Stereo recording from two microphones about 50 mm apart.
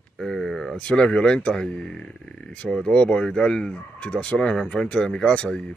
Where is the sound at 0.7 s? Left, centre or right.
Centre.